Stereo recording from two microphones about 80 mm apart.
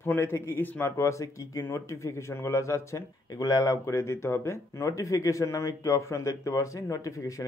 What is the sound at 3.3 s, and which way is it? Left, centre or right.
Speech, left.